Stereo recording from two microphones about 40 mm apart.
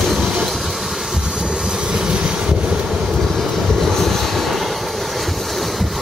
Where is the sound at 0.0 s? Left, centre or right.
Centre.